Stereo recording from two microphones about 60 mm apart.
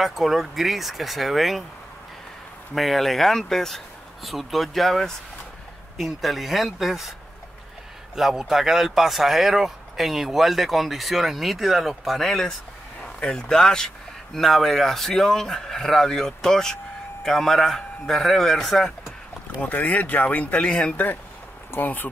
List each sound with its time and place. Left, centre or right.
0.0 s speech: centre
2.7 s speech: centre
8.2 s speech: centre
19.6 s speech: left